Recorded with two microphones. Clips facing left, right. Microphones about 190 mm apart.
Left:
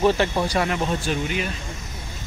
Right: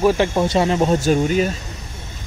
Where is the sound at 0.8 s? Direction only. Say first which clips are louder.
Right 8 dB; 45° right (ahead or behind).